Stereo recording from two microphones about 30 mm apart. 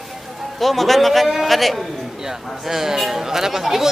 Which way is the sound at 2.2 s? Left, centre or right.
Centre.